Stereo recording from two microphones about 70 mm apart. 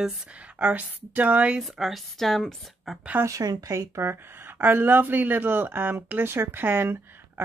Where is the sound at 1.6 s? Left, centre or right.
Centre.